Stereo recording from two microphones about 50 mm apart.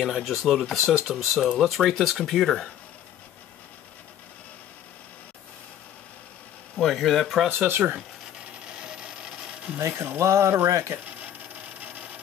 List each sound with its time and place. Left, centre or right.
0.1 s speech: centre
6.8 s speech: centre
7.5 s speech: right
8.7 s a sound: centre
9.8 s speech: right
10.7 s speech: right
11.1 s wood: right